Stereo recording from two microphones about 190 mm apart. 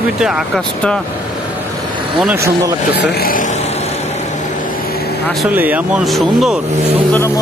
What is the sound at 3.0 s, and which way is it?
Speech, 50° left (ahead or behind).